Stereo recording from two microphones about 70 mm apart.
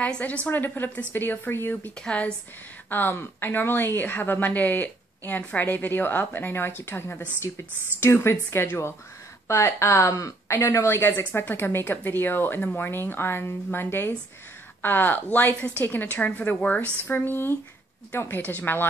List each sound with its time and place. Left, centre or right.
0.0 s a woman's voice: centre
2.0 s speech: centre
2.9 s a woman's voice: left